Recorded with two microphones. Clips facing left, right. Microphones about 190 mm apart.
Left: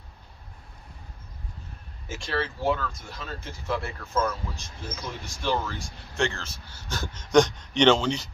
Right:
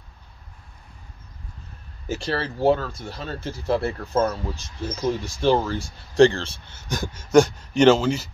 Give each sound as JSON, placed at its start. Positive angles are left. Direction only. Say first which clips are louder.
{"t": 2.0, "sound": "speech", "louder": "right 4 dB", "side_deg": -35}